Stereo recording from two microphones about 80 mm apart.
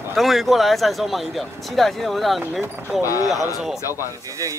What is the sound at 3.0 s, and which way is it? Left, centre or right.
Speech, left.